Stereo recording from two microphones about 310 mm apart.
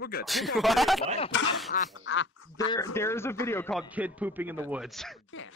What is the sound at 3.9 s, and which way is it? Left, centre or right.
Speech, centre.